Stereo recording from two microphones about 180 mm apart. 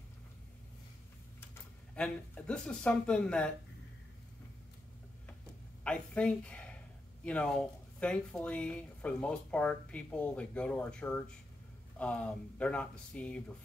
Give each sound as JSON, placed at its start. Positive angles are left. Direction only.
{"t": 1.5, "sound": "speech", "side_deg": 5}
{"t": 5.9, "sound": "speech", "side_deg": 5}